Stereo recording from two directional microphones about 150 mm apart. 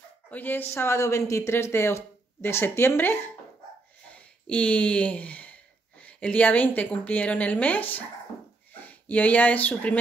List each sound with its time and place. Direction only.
0.3 s speech: 10° left (ahead or behind)